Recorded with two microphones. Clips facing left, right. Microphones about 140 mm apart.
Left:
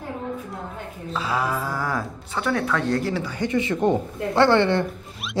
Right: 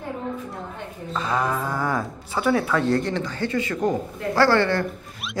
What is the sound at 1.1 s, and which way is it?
Speech, 5° left (ahead or behind).